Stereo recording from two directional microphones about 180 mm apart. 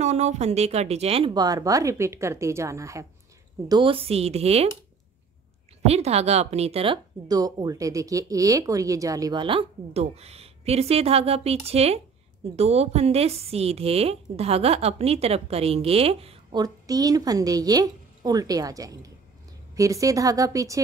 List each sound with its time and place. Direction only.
0.0 s speech: 40° right (ahead or behind)
5.9 s speech: 35° right (ahead or behind)
16.6 s a woman's voice: 20° right (ahead or behind)